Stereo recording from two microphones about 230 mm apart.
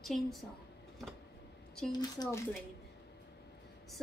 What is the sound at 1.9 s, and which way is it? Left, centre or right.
Speech, centre.